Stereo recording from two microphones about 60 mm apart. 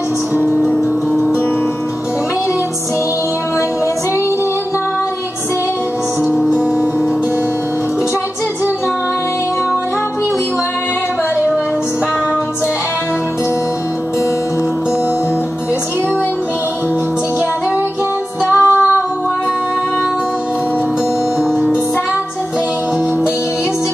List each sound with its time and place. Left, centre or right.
18.5 s music: right